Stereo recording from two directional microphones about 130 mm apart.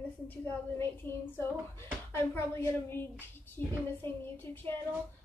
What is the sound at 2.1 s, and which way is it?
Speech, 15° left (ahead or behind).